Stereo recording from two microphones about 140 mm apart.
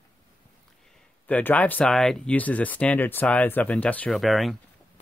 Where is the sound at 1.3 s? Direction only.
10° left (ahead or behind).